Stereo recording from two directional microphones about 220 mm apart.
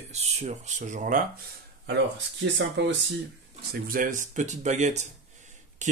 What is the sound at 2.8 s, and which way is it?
Speech, 55° right (ahead or behind).